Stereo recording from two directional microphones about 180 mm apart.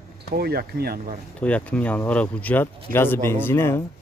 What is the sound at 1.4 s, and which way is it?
Speech, 5° left (ahead or behind).